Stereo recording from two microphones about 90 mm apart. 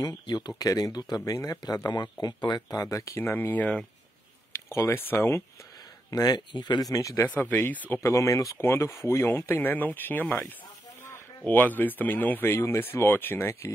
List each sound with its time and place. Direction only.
0.0 s speech: 50° left (ahead or behind); by 3.8 s 15° left (ahead or behind)
4.5 s speech: 30° left (ahead or behind)
6.0 s speech: 45° left (ahead or behind)
7.2 s speech: 15° left (ahead or behind)
7.9 s speech: 35° left (ahead or behind)
11.4 s speech: 20° left (ahead or behind)